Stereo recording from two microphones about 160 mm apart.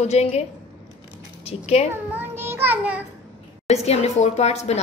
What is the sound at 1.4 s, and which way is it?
Speech, 40° left (ahead or behind).